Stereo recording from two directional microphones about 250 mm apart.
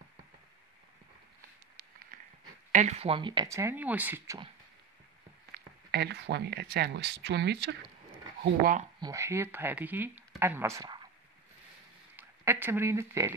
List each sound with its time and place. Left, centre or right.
2.1 s a sound: right
2.7 s speech: right; by 4.4 s centre
5.5 s speech: right
9.0 s speech: centre
12.2 s speech: centre